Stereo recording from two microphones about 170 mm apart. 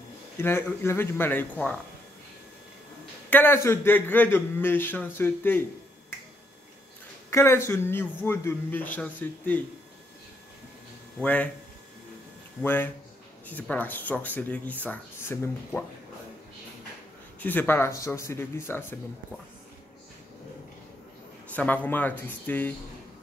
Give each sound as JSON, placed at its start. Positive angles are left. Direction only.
{"t": 0.4, "sound": "a man's voice", "side_deg": 15}
{"t": 3.3, "sound": "a man's voice", "side_deg": 10}
{"t": 7.2, "sound": "a man's voice", "side_deg": 15}
{"t": 12.6, "sound": "a man's voice", "side_deg": 10}
{"t": 17.4, "sound": "a man's voice", "side_deg": 10}
{"t": 21.5, "sound": "a man's voice", "side_deg": 10}